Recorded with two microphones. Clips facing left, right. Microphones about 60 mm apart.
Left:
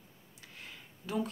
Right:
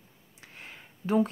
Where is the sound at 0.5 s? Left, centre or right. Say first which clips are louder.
Right 3 dB; right.